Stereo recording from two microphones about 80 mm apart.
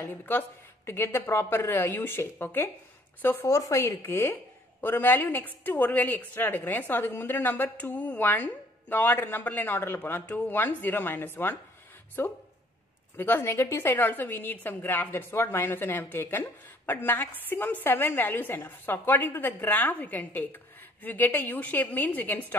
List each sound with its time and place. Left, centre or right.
0.0 s a woman's voice: left
3.4 s a woman's voice: left